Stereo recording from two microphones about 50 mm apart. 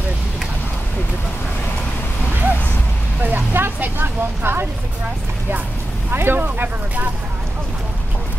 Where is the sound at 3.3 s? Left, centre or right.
Right.